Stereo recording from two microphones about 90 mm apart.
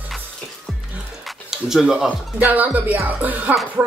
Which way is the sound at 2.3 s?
20° right (ahead or behind).